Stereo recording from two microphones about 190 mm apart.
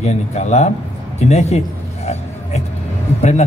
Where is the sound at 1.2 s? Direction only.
35° left (ahead or behind).